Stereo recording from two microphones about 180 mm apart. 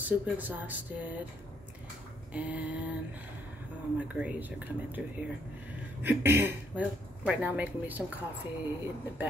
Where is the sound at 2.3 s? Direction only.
5° right (ahead or behind).